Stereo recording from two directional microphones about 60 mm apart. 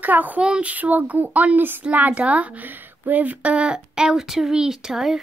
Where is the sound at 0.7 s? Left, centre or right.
Right.